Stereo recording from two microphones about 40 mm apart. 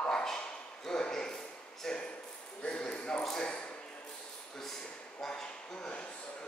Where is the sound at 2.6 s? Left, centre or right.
Left.